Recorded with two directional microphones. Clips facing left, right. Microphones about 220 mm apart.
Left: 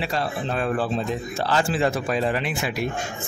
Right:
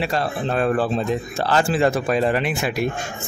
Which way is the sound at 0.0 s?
55° right (ahead or behind).